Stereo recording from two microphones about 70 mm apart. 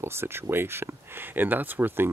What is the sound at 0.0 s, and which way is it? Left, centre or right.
Speech, right.